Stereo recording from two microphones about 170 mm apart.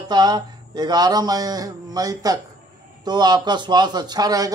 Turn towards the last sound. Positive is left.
turn(degrees=-20)  # may be behind; listen again after turning